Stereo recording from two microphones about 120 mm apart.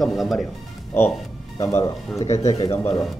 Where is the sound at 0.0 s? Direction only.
Centre (ahead or behind).